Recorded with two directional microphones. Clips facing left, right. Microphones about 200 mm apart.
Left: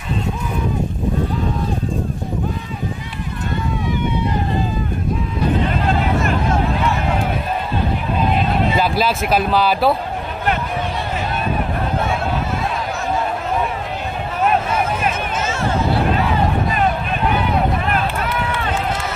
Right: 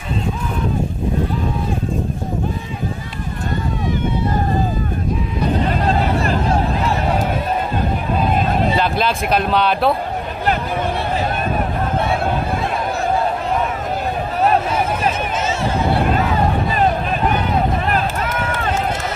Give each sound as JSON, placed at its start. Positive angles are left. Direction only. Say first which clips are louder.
{"t": 8.7, "sound": "speech", "louder": "even", "side_deg": 5}
{"t": 17.8, "sound": "run", "louder": "right 1 dB", "side_deg": -40}